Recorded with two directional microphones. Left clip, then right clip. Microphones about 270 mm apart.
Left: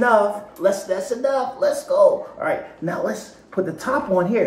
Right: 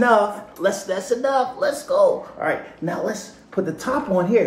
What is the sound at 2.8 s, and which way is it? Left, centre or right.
Speech, centre.